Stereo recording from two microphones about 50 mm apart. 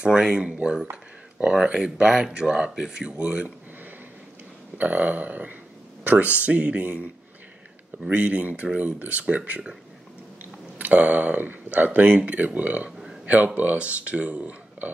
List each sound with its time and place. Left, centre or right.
0.0 s speech: centre
4.7 s speech: right
8.1 s speech: right
10.4 s speech: right